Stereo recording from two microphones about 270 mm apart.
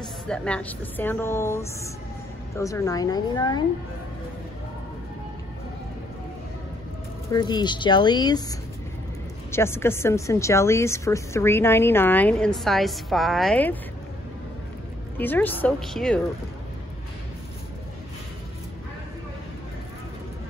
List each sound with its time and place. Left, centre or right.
0.3 s speech: centre
7.2 s speech: centre
15.1 s speech: centre